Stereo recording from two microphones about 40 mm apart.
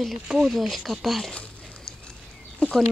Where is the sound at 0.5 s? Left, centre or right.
Centre.